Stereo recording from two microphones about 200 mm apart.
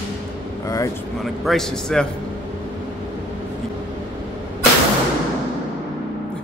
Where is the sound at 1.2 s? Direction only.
Centre (ahead or behind).